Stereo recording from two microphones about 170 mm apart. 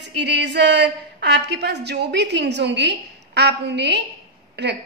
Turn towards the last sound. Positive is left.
turn(degrees=-80)